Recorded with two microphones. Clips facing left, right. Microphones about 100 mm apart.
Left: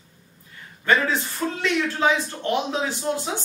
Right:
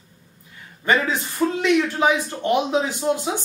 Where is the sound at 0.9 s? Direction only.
15° right (ahead or behind).